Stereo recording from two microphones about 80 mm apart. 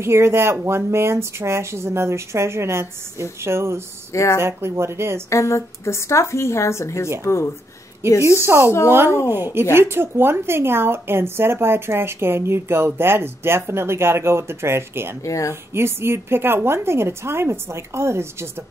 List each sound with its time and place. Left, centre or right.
0.0 s speech: right
4.1 s speech: left
4.4 s speech: right
5.3 s speech: left
8.4 s speech: right
15.2 s speech: left
15.7 s speech: right